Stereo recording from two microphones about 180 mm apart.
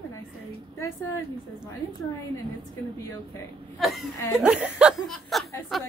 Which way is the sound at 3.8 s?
Centre (ahead or behind).